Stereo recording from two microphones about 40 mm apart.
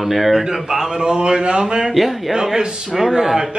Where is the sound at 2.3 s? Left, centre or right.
Centre.